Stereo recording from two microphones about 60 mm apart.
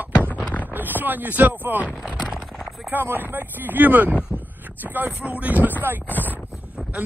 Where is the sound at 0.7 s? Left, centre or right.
Right.